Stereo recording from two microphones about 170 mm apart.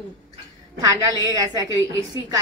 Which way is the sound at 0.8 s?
20° right (ahead or behind).